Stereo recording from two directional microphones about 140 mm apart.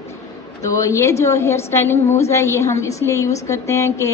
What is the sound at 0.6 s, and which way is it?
A woman's voice, 25° left (ahead or behind).